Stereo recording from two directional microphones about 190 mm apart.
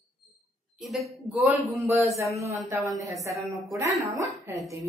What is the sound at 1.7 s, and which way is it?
Speech, 15° right (ahead or behind).